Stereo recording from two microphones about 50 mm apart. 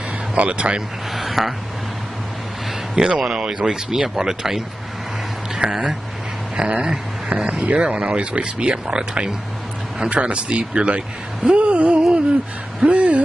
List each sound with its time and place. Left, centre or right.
0.3 s speech: right
1.1 s a sound: centre
3.0 s speech: centre